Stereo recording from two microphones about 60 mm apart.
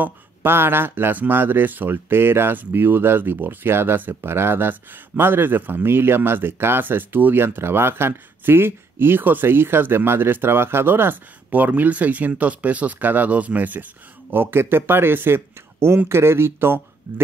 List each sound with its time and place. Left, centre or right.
0.0 s speech: right
14.3 s speech: right